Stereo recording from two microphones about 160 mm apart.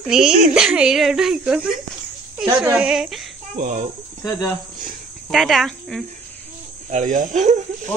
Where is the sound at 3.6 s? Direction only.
55° right (ahead or behind).